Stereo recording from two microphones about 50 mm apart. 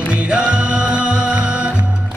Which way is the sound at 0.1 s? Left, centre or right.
Right.